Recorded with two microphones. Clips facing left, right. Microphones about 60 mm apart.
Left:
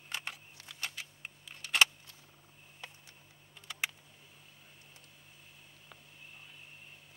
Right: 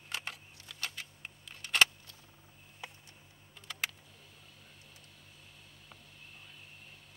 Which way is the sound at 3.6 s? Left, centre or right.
Centre.